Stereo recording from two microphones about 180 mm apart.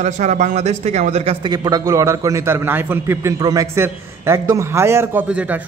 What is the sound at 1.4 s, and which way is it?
A man's voice, 20° right (ahead or behind).